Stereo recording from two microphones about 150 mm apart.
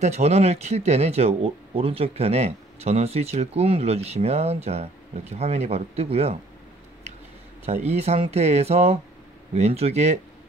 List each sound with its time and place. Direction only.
0.0 s speech: 45° right (ahead or behind)
7.6 s speech: 45° right (ahead or behind)